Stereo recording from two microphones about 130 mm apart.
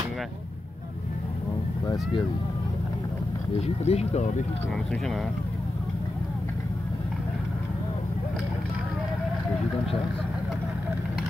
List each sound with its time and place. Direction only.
3.6 s speech: 55° left (ahead or behind)